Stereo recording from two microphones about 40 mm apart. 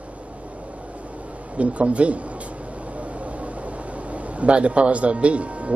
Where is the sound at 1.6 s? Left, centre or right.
Right.